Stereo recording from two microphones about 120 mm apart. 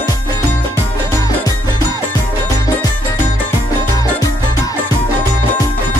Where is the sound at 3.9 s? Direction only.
30° left (ahead or behind).